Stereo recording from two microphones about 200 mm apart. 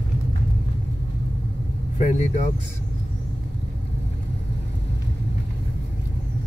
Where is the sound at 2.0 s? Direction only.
40° left (ahead or behind).